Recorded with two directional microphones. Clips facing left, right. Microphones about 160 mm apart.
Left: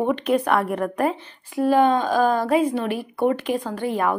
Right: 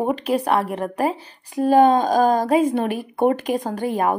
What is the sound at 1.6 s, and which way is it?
A woman's voice, 40° right (ahead or behind).